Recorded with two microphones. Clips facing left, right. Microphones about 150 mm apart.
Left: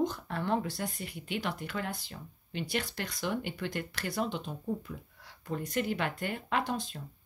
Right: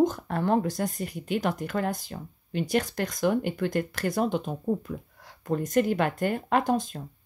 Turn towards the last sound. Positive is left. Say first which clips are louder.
# right 8 dB
turn(degrees=-45)  # may be behind; listen again after turning